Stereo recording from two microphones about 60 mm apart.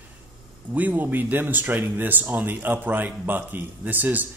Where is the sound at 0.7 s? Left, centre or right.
Right.